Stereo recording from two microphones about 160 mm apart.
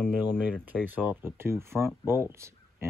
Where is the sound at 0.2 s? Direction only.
10° right (ahead or behind).